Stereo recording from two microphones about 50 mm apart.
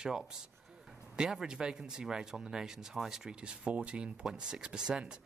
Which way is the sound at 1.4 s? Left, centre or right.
Centre.